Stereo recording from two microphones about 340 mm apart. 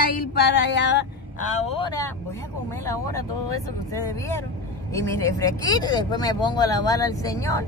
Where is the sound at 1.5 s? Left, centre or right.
Centre.